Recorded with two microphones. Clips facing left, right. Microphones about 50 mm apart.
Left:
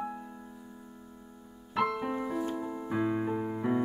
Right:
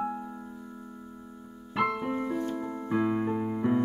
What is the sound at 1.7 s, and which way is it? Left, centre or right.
Piano, centre.